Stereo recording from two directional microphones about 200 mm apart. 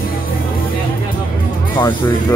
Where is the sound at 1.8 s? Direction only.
25° left (ahead or behind).